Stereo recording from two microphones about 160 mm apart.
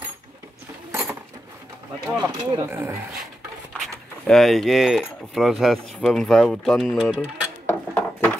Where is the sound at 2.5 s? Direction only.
15° right (ahead or behind).